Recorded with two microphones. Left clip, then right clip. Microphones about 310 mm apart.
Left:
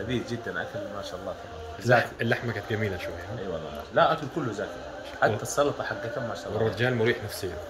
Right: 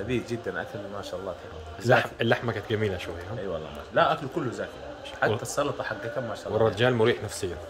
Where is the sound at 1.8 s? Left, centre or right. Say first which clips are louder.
Even; centre.